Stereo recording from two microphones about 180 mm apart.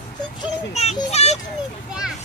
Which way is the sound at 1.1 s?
35° left (ahead or behind).